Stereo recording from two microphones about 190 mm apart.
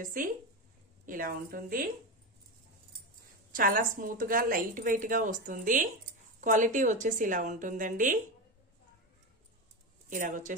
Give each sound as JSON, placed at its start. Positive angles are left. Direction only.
{"t": 0.0, "sound": "a woman's voice", "side_deg": -45}
{"t": 3.5, "sound": "a woman's voice", "side_deg": -50}
{"t": 10.0, "sound": "speech", "side_deg": -45}